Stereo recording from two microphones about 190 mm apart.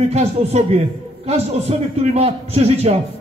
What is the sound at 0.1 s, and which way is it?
A man's voice, 35° right (ahead or behind).